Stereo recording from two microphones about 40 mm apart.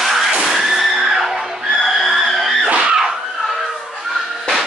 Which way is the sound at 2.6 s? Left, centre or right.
Right.